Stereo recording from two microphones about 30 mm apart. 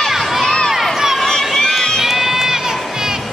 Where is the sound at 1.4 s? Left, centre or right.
Centre.